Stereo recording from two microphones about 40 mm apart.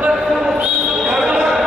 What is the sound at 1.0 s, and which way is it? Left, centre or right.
Basketball bounce, centre.